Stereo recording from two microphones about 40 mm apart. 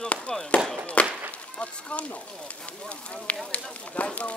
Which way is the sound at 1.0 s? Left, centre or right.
Left.